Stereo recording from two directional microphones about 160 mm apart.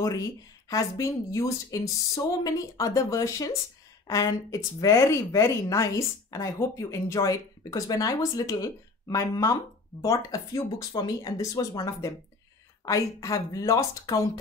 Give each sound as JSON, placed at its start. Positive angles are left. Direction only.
{"t": 0.0, "sound": "speech", "side_deg": 20}